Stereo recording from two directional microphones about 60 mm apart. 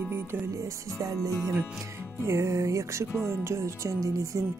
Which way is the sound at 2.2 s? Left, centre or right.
Right.